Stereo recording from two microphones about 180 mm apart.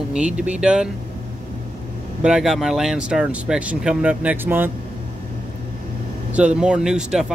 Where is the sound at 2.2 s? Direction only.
5° right (ahead or behind).